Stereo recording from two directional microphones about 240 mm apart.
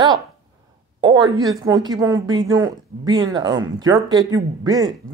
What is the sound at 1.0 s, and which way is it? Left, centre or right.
A woman's voice, centre.